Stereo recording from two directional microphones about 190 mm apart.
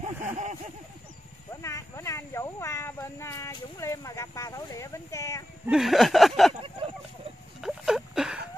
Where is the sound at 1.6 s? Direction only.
15° left (ahead or behind).